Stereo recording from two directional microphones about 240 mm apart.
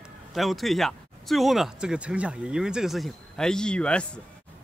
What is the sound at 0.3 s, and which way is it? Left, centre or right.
A woman's voice, centre.